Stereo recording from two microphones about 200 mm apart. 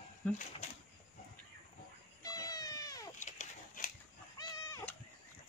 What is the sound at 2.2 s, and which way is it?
Cat, 20° left (ahead or behind).